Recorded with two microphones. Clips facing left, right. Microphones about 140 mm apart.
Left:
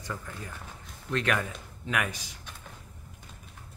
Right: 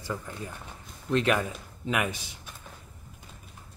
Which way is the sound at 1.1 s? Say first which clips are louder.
Right 4 dB; 20° right (ahead or behind).